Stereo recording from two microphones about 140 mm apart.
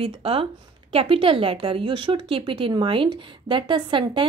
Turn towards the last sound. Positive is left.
turn(degrees=-35)  # may be behind; listen again after turning